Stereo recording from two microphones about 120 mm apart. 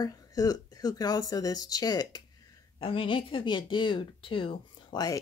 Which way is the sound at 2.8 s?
45° left (ahead or behind).